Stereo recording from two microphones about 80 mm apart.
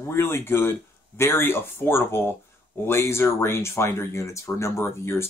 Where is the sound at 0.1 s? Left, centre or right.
Left.